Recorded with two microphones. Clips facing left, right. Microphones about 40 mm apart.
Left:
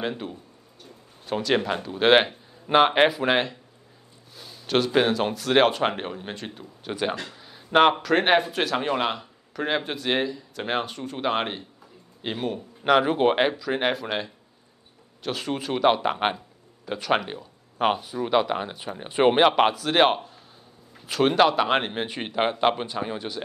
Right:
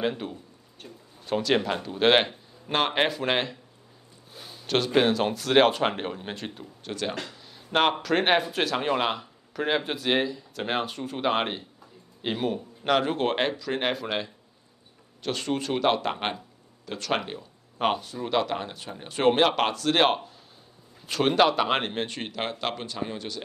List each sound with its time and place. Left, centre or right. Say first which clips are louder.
0.0 s speech: right 1 dB; centre
4.3 s a sound: right 1 dB; right
4.6 s speech: left 1 dB; centre
6.9 s a man's voice: left 4 dB; centre
12.9 s speech: left 5 dB; centre